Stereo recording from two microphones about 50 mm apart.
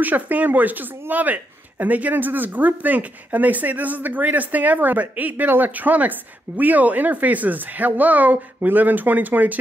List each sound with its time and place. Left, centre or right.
0.0 s speech: right